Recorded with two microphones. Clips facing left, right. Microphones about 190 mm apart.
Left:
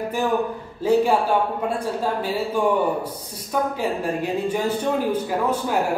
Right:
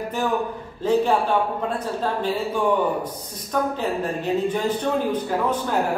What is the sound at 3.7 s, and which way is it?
A man's voice, 10° left (ahead or behind).